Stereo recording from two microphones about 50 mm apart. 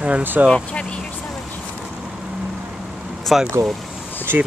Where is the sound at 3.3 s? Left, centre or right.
Centre.